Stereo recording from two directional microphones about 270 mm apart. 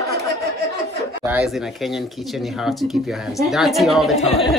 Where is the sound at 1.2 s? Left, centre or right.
Centre.